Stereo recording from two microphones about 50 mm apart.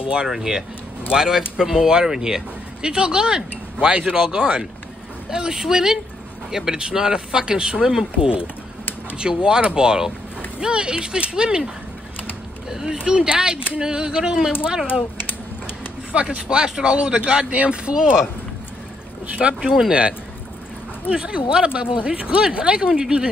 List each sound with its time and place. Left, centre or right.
0.1 s speech: centre
9.2 s speech: centre
16.1 s speech: right
19.3 s speech: right